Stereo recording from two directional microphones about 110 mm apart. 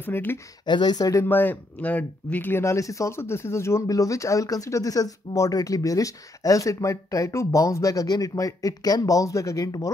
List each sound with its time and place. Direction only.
0.0 s speech: 20° left (ahead or behind)
0.7 s speech: 45° left (ahead or behind)
1.2 s speech: 20° left (ahead or behind)